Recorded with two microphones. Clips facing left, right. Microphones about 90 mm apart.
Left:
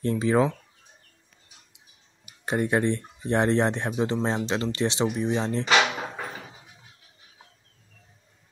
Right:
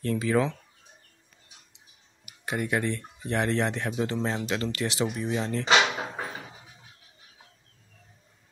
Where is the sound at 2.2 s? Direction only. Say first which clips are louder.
Left 5 dB; 30° left (ahead or behind).